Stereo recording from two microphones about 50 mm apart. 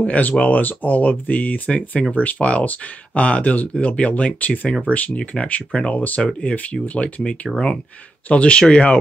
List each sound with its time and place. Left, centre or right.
0.0 s speech: left